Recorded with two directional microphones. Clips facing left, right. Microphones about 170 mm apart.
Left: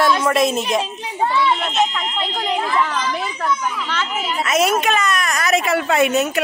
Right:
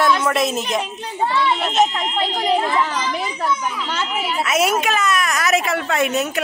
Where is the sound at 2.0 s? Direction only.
35° right (ahead or behind).